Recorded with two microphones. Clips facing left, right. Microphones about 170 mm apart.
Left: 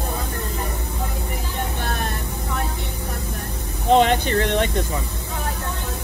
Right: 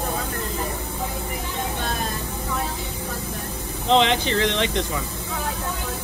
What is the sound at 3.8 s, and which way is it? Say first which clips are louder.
Speech: left 3 dB; 50° left (ahead or behind).